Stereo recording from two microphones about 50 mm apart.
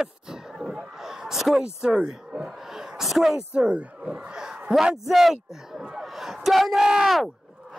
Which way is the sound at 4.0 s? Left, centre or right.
Centre.